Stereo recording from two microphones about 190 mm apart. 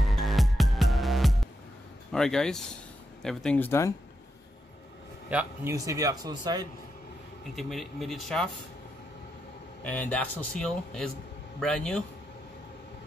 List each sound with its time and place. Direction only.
0.0 s music: centre (ahead or behind)
2.1 s speech: 5° left (ahead or behind)
5.3 s a man's voice: 10° right (ahead or behind)
7.5 s speech: centre (ahead or behind)
9.8 s speech: 5° left (ahead or behind)